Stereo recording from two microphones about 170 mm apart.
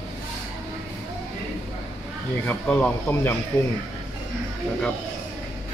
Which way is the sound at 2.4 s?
10° left (ahead or behind).